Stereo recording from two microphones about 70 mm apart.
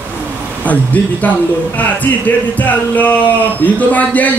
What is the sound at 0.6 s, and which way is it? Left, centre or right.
A man's voice, left.